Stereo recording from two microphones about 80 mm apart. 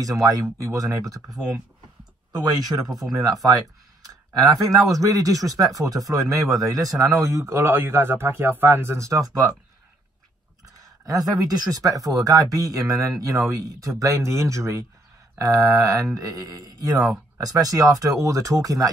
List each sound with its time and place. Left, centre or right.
0.0 s speech: right
2.4 s speech: right
10.6 s speech: right